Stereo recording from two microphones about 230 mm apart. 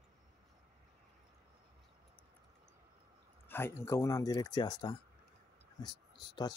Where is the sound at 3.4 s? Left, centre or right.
Centre.